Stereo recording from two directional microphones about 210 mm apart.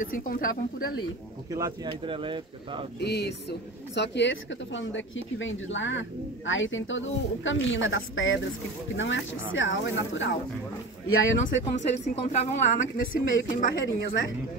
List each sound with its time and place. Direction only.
0.0 s speech: 40° left (ahead or behind)
1.5 s speech: 20° right (ahead or behind)
3.0 s speech: 50° left (ahead or behind)
11.4 s a woman's voice: 35° left (ahead or behind)